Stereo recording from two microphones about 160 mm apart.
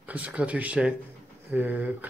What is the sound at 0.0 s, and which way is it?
Speech, 10° right (ahead or behind).